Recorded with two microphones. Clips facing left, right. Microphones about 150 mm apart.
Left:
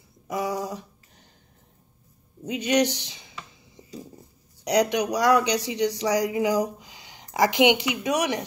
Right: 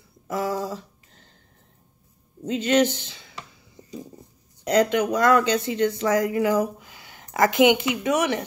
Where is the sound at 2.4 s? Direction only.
15° left (ahead or behind).